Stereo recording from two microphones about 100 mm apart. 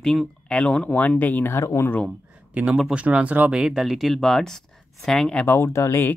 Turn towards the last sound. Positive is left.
turn(degrees=25)  # may be behind; listen again after turning